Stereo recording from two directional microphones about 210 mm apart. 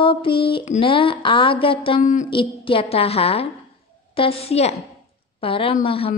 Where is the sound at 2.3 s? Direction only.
25° left (ahead or behind).